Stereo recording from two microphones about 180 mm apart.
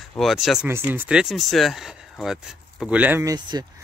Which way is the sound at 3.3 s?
25° right (ahead or behind).